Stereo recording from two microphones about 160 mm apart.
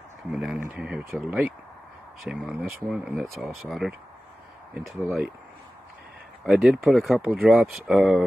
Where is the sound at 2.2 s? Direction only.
5° right (ahead or behind).